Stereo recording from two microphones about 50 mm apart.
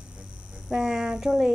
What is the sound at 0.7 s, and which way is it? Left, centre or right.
Speech, centre.